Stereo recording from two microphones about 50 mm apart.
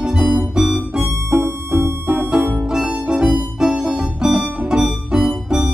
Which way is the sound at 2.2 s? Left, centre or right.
Centre.